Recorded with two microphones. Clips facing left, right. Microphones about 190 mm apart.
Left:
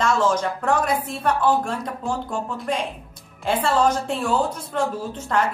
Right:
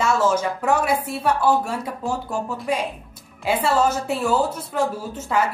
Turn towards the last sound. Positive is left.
turn(degrees=-5)  # may be behind; listen again after turning